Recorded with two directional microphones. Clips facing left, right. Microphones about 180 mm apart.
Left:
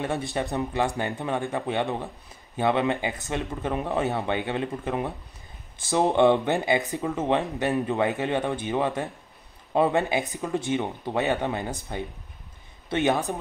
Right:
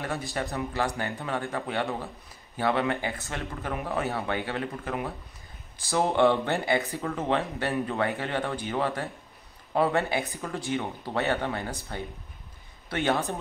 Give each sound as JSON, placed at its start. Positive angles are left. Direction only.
{"t": 0.0, "sound": "speech", "side_deg": 20}